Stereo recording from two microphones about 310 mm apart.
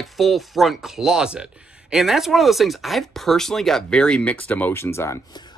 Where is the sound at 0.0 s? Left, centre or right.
Centre.